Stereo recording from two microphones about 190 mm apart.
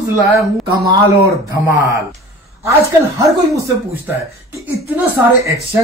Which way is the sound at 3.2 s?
15° right (ahead or behind).